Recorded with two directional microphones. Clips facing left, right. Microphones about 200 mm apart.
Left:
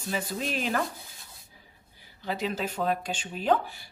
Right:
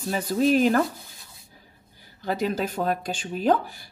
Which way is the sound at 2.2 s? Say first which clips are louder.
Right 5 dB; 45° right (ahead or behind).